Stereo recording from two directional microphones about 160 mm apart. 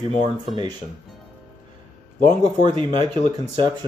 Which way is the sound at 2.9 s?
45° left (ahead or behind).